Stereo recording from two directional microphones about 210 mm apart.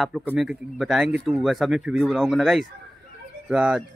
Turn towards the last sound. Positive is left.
turn(degrees=-5)  # may be behind; listen again after turning